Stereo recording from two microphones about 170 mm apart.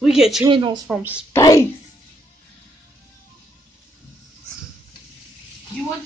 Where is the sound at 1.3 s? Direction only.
20° left (ahead or behind).